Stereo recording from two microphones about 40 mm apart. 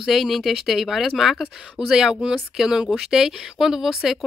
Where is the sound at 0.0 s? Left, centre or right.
Centre.